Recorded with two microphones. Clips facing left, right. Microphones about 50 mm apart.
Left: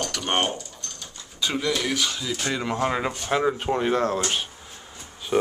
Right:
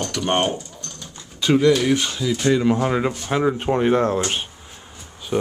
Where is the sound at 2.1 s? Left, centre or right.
Centre.